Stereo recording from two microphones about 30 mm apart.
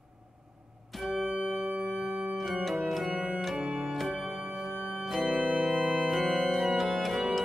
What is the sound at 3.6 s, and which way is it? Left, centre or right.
Organ, right.